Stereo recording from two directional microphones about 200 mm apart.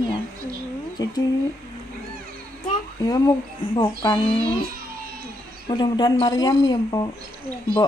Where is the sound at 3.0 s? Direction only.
20° left (ahead or behind).